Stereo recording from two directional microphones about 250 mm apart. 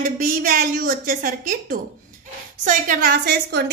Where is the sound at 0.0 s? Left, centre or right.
Right.